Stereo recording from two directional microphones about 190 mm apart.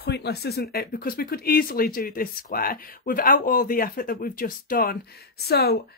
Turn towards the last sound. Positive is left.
turn(degrees=55)  # may be behind; listen again after turning